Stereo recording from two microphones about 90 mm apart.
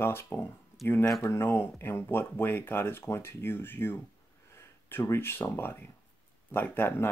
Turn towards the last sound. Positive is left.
turn(degrees=20)  # may be behind; listen again after turning